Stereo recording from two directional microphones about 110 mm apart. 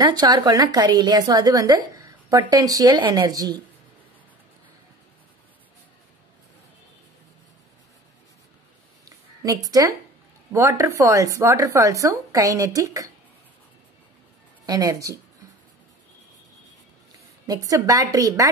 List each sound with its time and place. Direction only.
0.0 s a woman's voice: 40° right (ahead or behind)
9.4 s a woman's voice: 30° right (ahead or behind)
14.7 s a woman's voice: 35° right (ahead or behind)
17.5 s a woman's voice: 30° right (ahead or behind)